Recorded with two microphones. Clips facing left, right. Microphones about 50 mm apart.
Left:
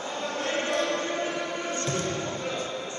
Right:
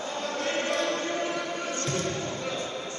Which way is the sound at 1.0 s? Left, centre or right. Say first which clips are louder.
Even; left.